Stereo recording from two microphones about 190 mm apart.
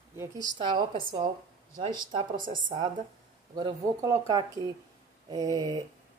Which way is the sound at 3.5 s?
20° right (ahead or behind).